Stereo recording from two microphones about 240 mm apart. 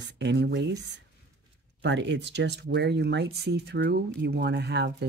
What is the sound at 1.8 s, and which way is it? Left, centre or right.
Speech, right.